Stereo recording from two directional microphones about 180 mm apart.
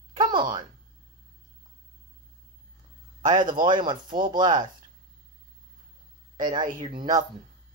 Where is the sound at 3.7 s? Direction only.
25° right (ahead or behind).